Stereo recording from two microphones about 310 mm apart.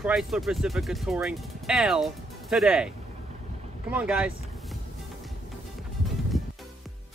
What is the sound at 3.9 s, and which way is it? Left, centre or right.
Speech, centre.